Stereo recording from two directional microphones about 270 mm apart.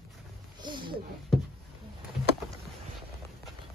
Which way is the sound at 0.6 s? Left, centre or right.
Centre.